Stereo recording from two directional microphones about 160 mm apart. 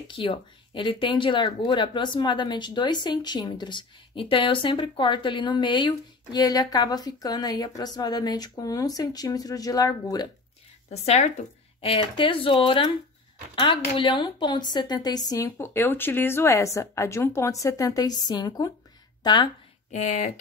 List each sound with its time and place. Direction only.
0.1 s speech: 30° left (ahead or behind)
10.9 s speech: 45° left (ahead or behind); by 19.5 s 30° left (ahead or behind)
19.9 s speech: 50° left (ahead or behind)